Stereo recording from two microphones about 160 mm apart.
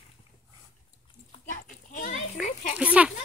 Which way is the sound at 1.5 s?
55° left (ahead or behind).